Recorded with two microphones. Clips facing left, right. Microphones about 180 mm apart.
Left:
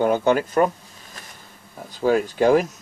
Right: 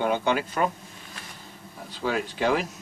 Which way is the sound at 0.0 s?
40° left (ahead or behind).